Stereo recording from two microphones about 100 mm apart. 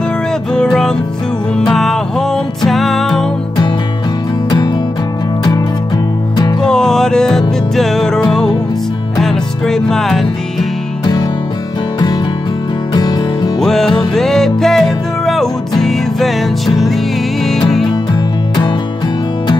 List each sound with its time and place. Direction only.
0.5 s music: 5° left (ahead or behind)
6.6 s music: 5° left (ahead or behind)
9.2 s music: 5° left (ahead or behind)
12.9 s music: 45° left (ahead or behind)
13.6 s music: 5° left (ahead or behind)